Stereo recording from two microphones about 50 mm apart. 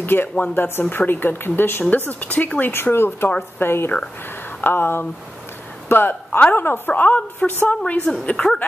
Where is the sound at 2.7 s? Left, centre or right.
Left.